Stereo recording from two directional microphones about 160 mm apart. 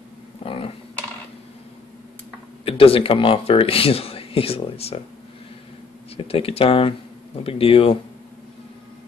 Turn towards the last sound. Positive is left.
turn(degrees=35)  # may be behind; listen again after turning